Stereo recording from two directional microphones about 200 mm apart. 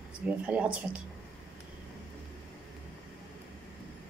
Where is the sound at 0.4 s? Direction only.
5° right (ahead or behind).